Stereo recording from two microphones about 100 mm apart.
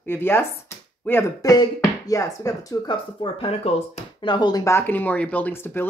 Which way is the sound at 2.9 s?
65° left (ahead or behind).